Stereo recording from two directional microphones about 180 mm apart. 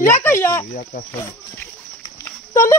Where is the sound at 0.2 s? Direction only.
15° left (ahead or behind).